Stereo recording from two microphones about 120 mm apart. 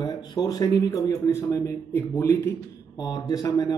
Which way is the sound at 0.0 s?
40° left (ahead or behind).